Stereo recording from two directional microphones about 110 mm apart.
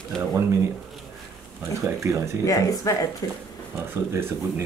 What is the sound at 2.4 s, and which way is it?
Speech, 30° left (ahead or behind).